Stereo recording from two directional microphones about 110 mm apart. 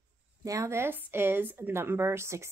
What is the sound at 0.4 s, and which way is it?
A woman's voice, 25° right (ahead or behind).